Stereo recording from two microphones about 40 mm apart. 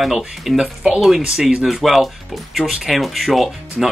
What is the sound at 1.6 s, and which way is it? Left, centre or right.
Speech, centre.